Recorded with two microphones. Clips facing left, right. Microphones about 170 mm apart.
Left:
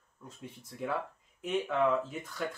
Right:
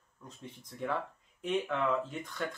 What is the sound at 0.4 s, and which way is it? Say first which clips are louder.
Speech: even; 5° left (ahead or behind).